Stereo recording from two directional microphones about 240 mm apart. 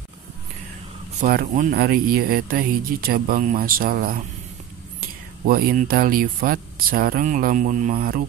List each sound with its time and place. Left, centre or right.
1.2 s speech: right
5.4 s speech: right